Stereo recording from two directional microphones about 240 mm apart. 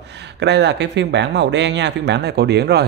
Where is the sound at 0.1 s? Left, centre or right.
Right.